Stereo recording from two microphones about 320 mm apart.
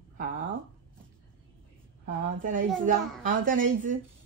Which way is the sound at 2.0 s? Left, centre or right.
Right.